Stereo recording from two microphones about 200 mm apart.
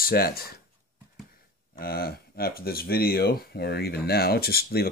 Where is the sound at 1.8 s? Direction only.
50° left (ahead or behind).